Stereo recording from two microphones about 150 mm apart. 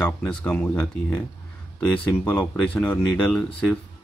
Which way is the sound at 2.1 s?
15° left (ahead or behind).